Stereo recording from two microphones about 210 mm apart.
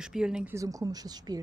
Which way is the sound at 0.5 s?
15° right (ahead or behind).